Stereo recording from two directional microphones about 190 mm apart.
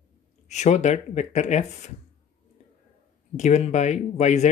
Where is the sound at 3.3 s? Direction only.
35° left (ahead or behind).